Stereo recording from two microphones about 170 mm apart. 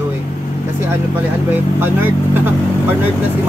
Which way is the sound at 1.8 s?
10° right (ahead or behind).